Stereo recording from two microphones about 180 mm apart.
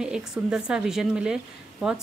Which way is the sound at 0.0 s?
5° right (ahead or behind).